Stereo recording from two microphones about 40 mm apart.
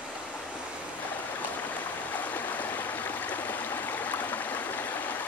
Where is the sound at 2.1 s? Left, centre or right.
Left.